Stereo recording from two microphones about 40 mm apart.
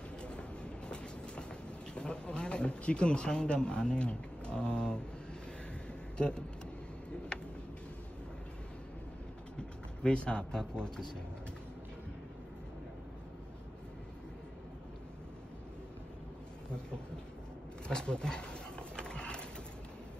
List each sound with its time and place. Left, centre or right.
0.2 s train: left
2.0 s speech: left
6.1 s speech: left
7.3 s a sound: left
9.6 s a sound: left
17.8 s wild animals: left